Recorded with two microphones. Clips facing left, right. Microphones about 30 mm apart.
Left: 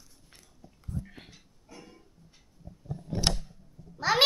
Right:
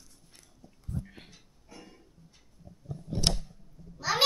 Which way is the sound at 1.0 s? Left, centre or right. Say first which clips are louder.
Left 1 dB; centre.